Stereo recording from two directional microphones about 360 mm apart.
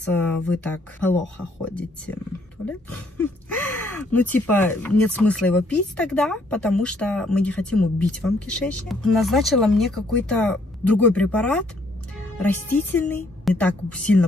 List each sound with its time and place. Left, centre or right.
0.1 s speech: centre